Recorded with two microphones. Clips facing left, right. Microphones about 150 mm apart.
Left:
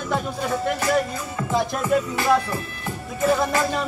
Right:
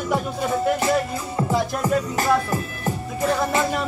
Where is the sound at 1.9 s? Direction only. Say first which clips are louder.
Left 1 dB; 35° right (ahead or behind).